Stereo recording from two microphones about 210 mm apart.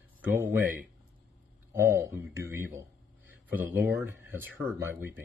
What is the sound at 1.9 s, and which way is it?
Speech, 15° right (ahead or behind).